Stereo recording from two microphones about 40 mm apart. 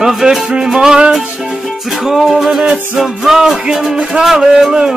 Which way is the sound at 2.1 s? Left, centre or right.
Centre.